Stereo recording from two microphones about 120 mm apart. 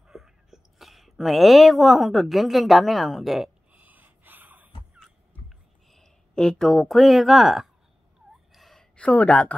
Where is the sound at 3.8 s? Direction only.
15° right (ahead or behind).